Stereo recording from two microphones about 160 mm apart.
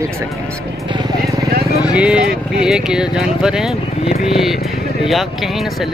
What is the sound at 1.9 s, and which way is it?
Speech, 5° right (ahead or behind).